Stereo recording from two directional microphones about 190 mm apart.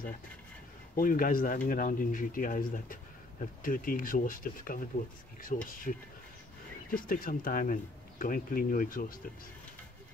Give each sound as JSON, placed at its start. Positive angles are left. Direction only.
{"t": 0.9, "sound": "speech", "side_deg": 45}